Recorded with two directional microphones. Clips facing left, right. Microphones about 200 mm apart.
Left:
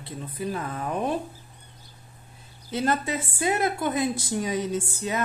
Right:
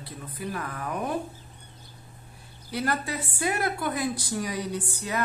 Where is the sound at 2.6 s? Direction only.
20° left (ahead or behind).